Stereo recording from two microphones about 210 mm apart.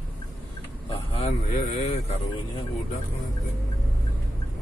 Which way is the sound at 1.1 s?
30° left (ahead or behind).